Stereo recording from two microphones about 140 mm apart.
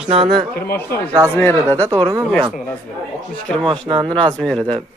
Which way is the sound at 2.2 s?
5° left (ahead or behind).